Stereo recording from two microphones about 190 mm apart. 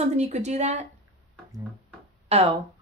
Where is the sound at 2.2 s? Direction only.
35° right (ahead or behind).